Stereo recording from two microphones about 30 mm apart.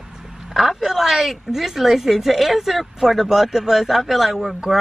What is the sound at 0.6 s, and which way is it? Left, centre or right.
A woman's voice, centre.